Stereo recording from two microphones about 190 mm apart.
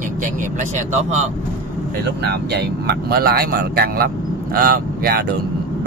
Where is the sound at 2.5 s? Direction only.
60° right (ahead or behind).